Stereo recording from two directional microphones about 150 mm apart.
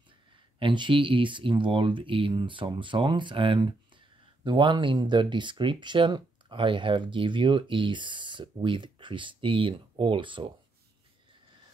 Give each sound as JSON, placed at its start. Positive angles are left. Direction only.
{"t": 0.6, "sound": "speech", "side_deg": -35}